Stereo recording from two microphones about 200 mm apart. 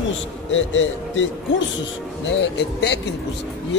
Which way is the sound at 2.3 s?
60° left (ahead or behind).